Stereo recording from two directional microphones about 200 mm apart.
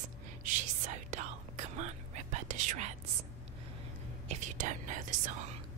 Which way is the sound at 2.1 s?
35° right (ahead or behind).